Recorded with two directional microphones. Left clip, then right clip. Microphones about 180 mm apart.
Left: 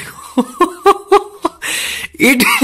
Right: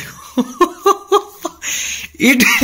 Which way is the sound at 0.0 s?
35° left (ahead or behind).